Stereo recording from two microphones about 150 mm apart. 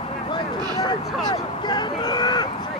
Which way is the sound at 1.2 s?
30° left (ahead or behind).